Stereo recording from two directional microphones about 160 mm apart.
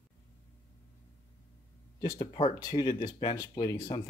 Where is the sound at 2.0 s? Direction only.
30° left (ahead or behind).